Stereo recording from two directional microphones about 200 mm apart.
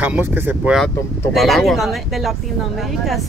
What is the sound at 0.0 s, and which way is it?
Speech, 10° right (ahead or behind).